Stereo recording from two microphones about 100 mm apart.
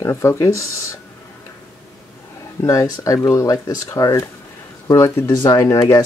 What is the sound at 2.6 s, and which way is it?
Speech, 35° left (ahead or behind).